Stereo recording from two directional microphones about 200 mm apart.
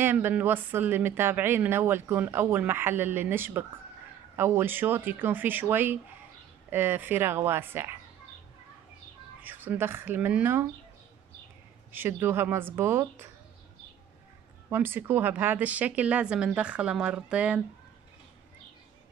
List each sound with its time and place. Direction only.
0.0 s a woman's voice: 10° right (ahead or behind)
9.4 s a woman's voice: 10° right (ahead or behind)
11.9 s a woman's voice: 10° right (ahead or behind)
14.7 s a woman's voice: 10° right (ahead or behind)